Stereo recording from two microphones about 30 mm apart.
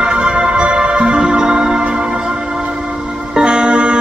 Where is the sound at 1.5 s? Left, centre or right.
Centre.